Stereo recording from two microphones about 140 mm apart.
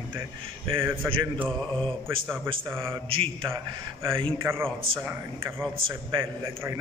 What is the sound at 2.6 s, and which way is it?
Speech, 20° right (ahead or behind).